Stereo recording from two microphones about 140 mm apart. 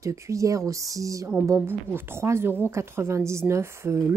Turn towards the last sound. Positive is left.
turn(degrees=-20)  # may be behind; listen again after turning